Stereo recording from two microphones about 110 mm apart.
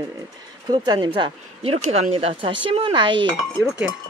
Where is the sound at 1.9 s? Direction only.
65° right (ahead or behind); by 3.3 s 50° right (ahead or behind).